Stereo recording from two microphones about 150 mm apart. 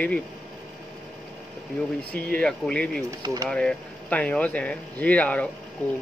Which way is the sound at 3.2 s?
25° right (ahead or behind).